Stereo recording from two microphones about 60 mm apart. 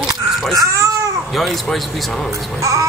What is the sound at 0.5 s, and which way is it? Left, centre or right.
Babbling, right.